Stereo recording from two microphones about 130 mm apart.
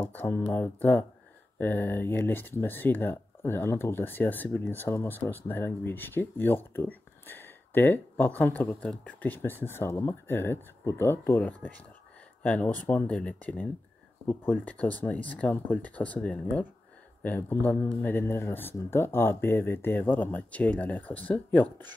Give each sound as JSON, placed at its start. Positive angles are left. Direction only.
{"t": 0.1, "sound": "speech", "side_deg": 15}